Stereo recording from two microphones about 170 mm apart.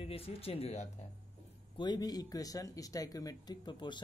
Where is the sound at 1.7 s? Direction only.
25° left (ahead or behind).